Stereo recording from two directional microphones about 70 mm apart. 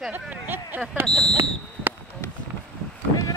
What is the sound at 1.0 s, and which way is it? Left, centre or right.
Speech, centre.